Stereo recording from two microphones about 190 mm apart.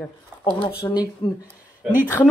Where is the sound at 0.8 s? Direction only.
20° left (ahead or behind).